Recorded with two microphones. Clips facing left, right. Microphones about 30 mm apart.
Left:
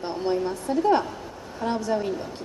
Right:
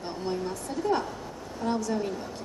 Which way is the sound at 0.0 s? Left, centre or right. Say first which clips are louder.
Left 6 dB; left.